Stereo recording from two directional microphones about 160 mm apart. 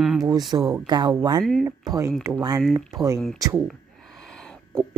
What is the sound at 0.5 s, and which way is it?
Speech, 20° right (ahead or behind).